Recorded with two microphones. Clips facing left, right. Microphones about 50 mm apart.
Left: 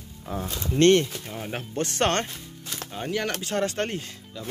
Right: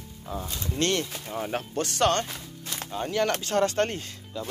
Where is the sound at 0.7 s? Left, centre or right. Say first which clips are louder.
Left 9 dB; left.